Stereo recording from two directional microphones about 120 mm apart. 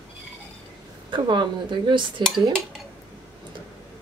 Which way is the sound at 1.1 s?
40° right (ahead or behind).